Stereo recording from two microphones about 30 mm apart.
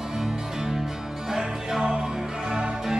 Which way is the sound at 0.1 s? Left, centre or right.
Centre.